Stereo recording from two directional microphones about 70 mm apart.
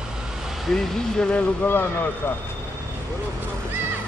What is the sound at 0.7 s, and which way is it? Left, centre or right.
Speech, centre.